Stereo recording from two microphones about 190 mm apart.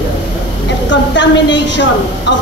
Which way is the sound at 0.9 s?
70° left (ahead or behind).